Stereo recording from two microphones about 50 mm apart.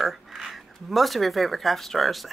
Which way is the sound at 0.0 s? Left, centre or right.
Centre.